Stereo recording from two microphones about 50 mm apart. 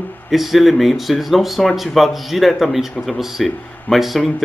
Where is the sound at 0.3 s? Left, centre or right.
Centre.